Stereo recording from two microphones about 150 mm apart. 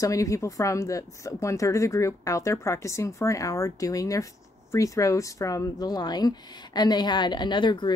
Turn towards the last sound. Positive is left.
turn(degrees=30)  # may be behind; listen again after turning